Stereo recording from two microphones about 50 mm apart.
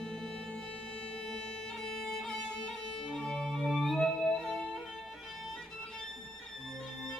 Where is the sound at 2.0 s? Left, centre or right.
Centre.